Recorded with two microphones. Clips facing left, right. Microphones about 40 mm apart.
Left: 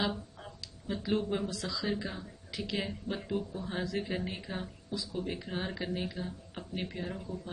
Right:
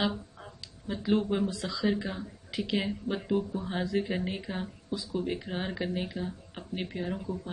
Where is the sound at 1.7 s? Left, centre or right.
Right.